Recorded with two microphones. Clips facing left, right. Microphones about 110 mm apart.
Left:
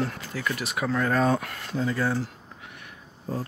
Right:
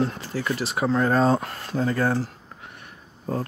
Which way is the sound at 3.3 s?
55° right (ahead or behind).